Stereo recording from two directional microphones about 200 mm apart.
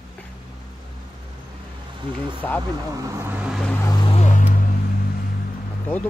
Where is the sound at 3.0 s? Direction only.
10° right (ahead or behind).